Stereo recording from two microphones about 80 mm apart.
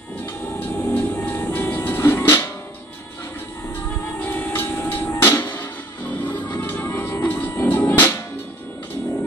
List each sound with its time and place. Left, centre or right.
0.6 s music: left
4.2 s music: left